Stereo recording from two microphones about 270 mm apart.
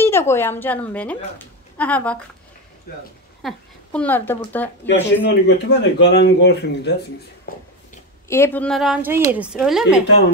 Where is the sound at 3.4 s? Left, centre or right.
Centre.